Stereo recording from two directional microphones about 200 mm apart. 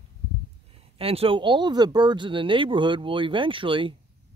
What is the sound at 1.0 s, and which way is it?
Speech, 30° right (ahead or behind).